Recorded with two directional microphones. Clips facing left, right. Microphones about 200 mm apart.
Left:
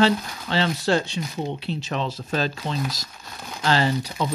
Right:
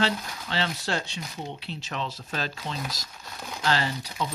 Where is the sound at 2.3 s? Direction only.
30° left (ahead or behind).